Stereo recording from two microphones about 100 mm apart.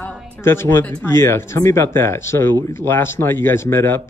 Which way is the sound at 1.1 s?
25° left (ahead or behind).